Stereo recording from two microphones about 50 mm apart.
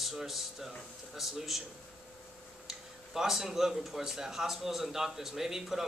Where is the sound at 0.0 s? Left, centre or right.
Centre.